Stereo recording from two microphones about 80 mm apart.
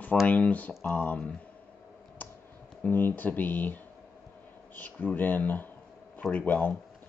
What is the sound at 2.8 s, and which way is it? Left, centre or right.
Speech, left.